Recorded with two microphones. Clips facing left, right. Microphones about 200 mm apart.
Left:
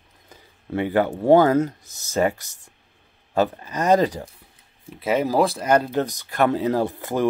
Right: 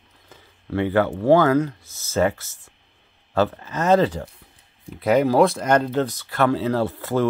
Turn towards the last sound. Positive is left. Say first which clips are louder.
# right 1 dB
turn(degrees=15)  # may be behind; listen again after turning